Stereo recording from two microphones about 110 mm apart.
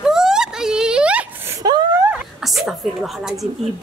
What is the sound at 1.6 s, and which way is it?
Gasp, 35° right (ahead or behind).